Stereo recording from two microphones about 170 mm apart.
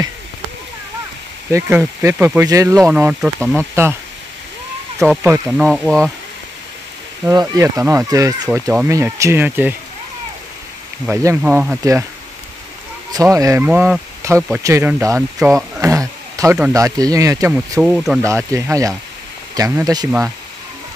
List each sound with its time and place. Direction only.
1.5 s speech: 10° right (ahead or behind)
2.9 s speech: 5° right (ahead or behind)
5.0 s speech: 5° right (ahead or behind)
7.2 s speech: 20° right (ahead or behind)
11.1 s speech: 10° right (ahead or behind)
13.1 s speech: 20° right (ahead or behind)
13.7 s speech: 5° right (ahead or behind)
14.2 s speech: 15° right (ahead or behind)
15.8 s a sound: 20° right (ahead or behind)
16.7 s speech: 20° right (ahead or behind)
17.6 s speech: 5° right (ahead or behind)
18.2 s speech: 20° right (ahead or behind)